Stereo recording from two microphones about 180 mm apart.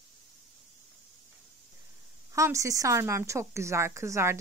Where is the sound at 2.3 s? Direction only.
15° right (ahead or behind).